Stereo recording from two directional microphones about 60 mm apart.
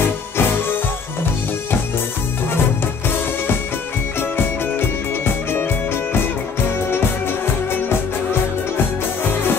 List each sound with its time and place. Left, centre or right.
0.0 s music: left
4.2 s music: left